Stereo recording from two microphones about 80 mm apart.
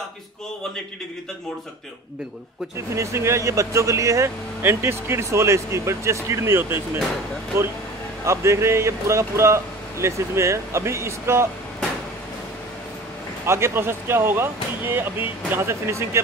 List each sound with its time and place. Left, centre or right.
2.9 s speech: right
13.5 s speech: right